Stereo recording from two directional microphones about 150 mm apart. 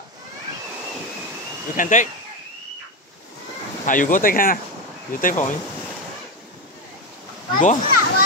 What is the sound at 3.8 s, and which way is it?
Speech, 60° left (ahead or behind).